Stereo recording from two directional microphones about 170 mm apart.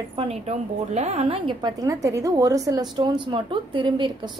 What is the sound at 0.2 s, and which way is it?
A woman's voice, 40° right (ahead or behind).